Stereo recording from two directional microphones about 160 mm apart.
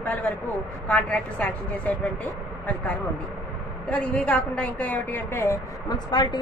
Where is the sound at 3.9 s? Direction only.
5° left (ahead or behind).